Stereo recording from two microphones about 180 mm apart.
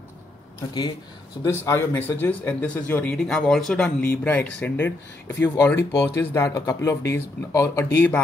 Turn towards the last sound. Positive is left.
turn(degrees=15)  # may be behind; listen again after turning